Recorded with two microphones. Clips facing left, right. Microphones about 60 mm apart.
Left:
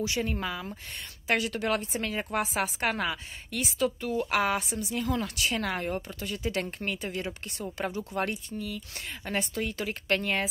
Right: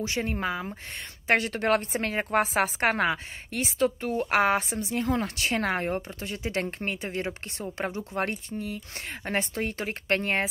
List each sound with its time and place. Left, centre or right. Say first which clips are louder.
0.0 s a woman's voice: right 1 dB; right